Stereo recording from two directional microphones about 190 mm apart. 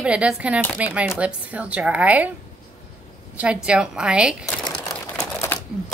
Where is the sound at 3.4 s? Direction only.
5° right (ahead or behind).